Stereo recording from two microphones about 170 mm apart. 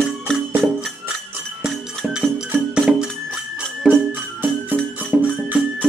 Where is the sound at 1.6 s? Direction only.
5° right (ahead or behind).